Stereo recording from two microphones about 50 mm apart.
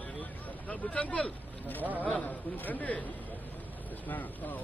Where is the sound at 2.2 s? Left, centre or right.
Left.